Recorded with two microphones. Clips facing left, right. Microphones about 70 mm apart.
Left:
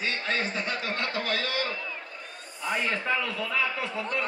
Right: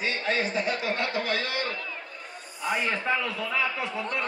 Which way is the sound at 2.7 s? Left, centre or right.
Centre.